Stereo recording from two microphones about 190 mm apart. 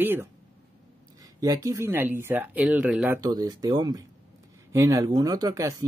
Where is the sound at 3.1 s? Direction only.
20° right (ahead or behind).